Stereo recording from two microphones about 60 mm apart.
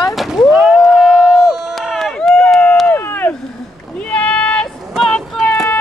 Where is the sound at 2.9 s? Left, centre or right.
Left.